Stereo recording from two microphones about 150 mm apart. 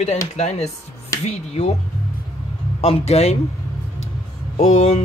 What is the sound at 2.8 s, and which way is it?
Speech, 45° left (ahead or behind).